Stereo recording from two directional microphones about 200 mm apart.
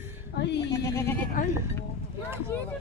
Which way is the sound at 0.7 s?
15° left (ahead or behind).